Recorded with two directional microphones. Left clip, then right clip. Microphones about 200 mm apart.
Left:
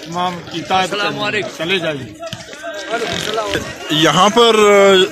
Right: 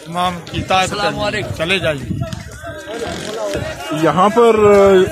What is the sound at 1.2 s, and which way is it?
Speech, 60° right (ahead or behind).